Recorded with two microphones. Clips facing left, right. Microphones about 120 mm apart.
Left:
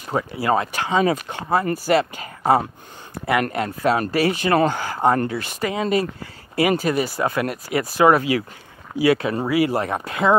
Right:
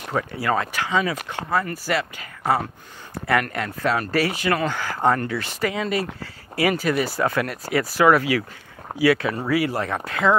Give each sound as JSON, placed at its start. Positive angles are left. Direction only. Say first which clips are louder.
{"t": 0.1, "sound": "speech", "louder": "left 3 dB", "side_deg": 20}
{"t": 1.9, "sound": "speech", "louder": "left 6 dB", "side_deg": 35}
{"t": 3.4, "sound": "speech", "louder": "left 4 dB", "side_deg": 25}